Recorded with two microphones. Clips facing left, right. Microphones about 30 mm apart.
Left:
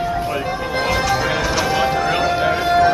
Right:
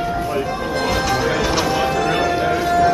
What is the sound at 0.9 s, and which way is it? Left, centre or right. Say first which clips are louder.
Music: left 1 dB; centre.